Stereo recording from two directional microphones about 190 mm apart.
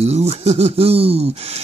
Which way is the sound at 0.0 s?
35° right (ahead or behind).